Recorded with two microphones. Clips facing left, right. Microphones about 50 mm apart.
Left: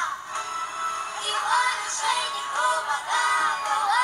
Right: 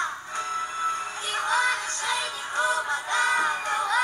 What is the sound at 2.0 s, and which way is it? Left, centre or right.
Music, left.